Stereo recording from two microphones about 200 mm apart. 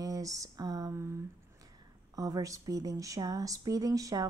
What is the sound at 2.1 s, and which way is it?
Speech, 15° right (ahead or behind).